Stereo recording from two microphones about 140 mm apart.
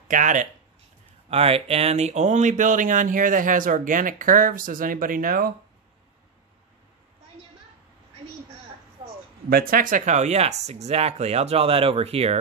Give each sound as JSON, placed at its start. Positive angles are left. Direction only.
{"t": 0.1, "sound": "speech", "side_deg": -65}
{"t": 1.3, "sound": "speech", "side_deg": -45}
{"t": 9.5, "sound": "speech", "side_deg": -90}